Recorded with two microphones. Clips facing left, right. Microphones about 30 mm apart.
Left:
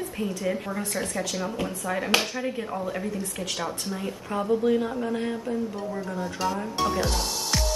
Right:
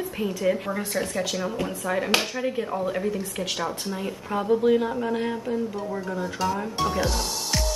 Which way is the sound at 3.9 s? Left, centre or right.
Centre.